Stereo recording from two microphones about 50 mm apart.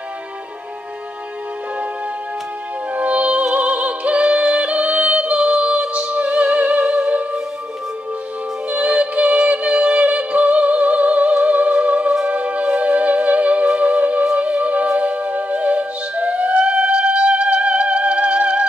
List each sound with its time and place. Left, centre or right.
2.9 s music: right
8.6 s music: right